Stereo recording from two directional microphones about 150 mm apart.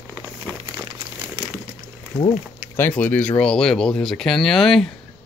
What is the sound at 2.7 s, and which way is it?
Speech, 15° left (ahead or behind).